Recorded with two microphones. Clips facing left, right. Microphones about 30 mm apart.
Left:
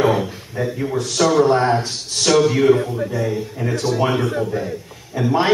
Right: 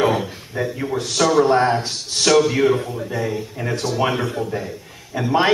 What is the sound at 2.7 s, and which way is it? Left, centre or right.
Speech, centre.